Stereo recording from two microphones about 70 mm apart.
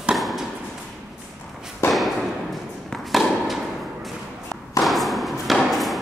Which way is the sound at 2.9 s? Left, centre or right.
Centre.